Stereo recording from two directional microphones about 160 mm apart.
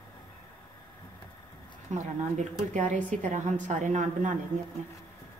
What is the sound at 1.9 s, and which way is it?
A woman's voice, 50° right (ahead or behind).